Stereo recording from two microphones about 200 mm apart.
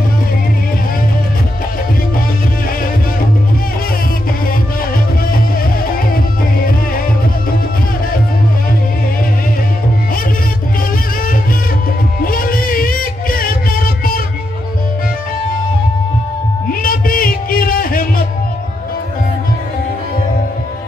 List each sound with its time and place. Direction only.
12.2 s music: 45° left (ahead or behind)
16.8 s music: 45° left (ahead or behind)